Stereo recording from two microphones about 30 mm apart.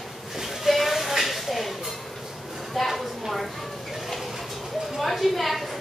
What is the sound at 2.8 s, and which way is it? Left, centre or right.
Speech, centre.